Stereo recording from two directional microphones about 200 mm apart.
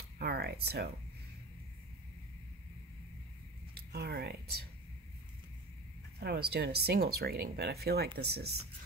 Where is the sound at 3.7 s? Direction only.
50° right (ahead or behind).